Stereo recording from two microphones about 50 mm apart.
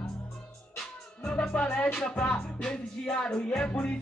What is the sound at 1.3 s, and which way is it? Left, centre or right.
Music, left.